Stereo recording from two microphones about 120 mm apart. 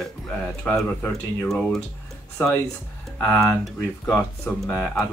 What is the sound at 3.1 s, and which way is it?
Speech, 15° left (ahead or behind).